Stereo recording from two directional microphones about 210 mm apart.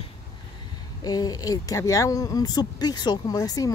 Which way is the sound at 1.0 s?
20° left (ahead or behind).